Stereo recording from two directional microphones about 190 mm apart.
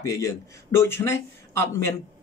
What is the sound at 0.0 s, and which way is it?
Speech, 15° left (ahead or behind).